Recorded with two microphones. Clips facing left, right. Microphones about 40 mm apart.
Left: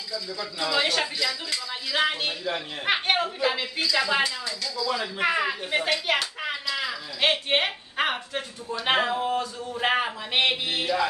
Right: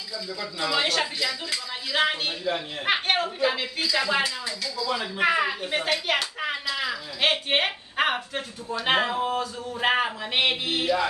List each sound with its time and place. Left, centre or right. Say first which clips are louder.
0.4 s speech: even; centre